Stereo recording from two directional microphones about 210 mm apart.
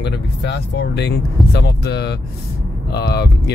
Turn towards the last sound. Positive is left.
turn(degrees=50)  # may be behind; listen again after turning